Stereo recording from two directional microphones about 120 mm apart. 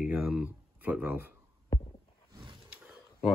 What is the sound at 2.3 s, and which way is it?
Roaring cats, 40° right (ahead or behind).